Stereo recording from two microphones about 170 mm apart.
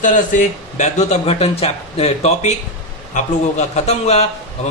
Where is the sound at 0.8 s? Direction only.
40° left (ahead or behind).